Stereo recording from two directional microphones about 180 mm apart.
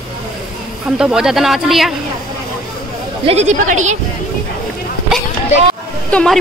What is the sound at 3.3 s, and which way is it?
Speech, 40° right (ahead or behind).